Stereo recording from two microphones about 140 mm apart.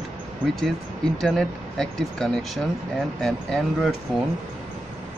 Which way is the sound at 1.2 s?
5° left (ahead or behind).